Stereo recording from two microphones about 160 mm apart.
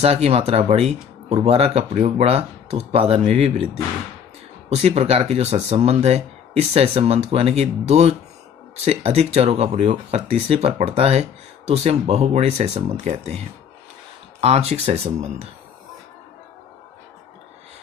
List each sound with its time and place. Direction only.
0.0 s speech: 40° right (ahead or behind)
14.4 s speech: 40° right (ahead or behind)